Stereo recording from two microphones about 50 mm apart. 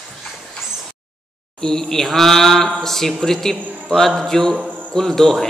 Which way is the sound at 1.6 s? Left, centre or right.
Centre.